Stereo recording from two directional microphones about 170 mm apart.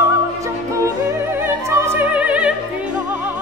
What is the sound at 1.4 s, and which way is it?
Opera, 15° right (ahead or behind).